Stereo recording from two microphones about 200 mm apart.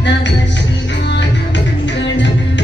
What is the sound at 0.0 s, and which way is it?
Music, 60° left (ahead or behind).